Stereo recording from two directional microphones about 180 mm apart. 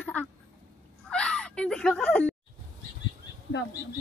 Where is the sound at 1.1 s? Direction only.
5° left (ahead or behind).